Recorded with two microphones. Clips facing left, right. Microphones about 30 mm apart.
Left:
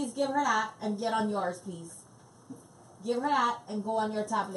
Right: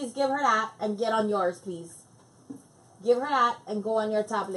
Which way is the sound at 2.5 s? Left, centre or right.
Centre.